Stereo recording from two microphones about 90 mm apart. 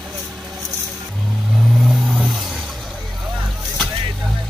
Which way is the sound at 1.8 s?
10° right (ahead or behind).